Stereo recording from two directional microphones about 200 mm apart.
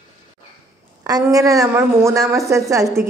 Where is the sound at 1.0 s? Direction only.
20° right (ahead or behind).